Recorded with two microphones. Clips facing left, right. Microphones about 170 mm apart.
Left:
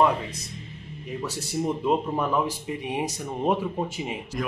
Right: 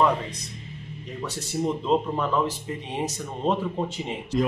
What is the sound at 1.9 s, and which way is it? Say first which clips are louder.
Speech: even; 10° left (ahead or behind).